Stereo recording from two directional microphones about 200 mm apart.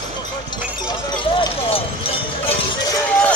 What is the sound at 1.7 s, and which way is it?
Clip-clop, 30° left (ahead or behind).